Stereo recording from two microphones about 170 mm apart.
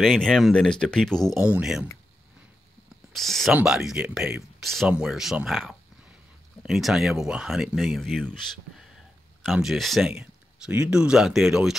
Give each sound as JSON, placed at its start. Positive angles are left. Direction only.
{"t": 0.0, "sound": "speech", "side_deg": 0}
{"t": 3.1, "sound": "speech", "side_deg": 0}